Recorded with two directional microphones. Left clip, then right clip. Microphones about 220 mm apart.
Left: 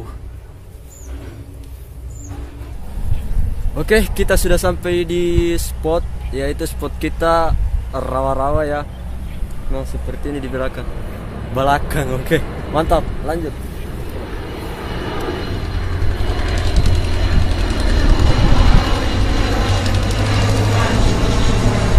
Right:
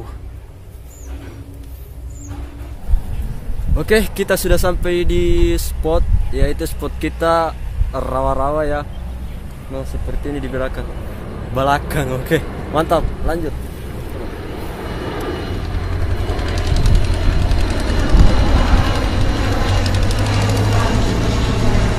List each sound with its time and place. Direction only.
3.7 s a man's voice: centre (ahead or behind)
14.3 s vehicle: 45° left (ahead or behind)